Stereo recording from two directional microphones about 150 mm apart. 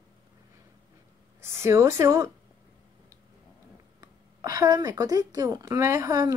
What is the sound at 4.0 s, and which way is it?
Speech, 25° right (ahead or behind).